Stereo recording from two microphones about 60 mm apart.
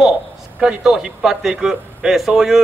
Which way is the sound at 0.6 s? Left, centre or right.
Centre.